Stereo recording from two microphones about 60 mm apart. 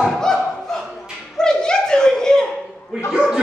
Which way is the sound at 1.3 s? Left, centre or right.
Centre.